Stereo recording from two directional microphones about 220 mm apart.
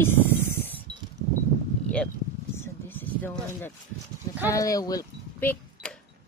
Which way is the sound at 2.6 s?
10° left (ahead or behind).